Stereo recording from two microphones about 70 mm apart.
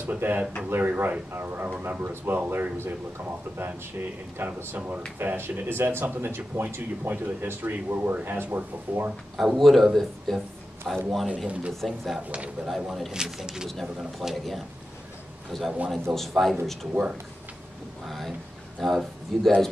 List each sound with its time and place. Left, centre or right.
0.0 s speech: right
9.4 s speech: centre
11.2 s speech: centre
11.7 s speech: centre
13.7 s speech: centre
16.9 s speech: centre
18.0 s speech: centre